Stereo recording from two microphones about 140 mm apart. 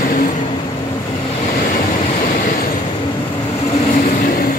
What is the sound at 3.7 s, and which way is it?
Vehicle, 60° left (ahead or behind).